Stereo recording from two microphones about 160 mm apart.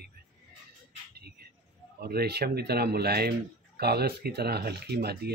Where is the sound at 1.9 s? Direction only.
75° right (ahead or behind).